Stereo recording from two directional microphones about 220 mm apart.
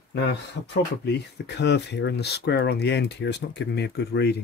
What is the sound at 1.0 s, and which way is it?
Speech, 50° left (ahead or behind).